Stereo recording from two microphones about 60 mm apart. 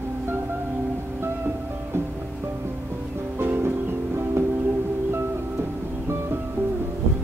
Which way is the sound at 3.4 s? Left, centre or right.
Right.